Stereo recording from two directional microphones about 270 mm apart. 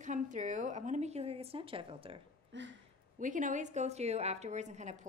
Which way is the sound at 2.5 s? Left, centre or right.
Right.